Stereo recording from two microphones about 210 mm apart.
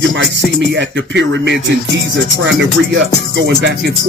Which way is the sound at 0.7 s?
55° right (ahead or behind).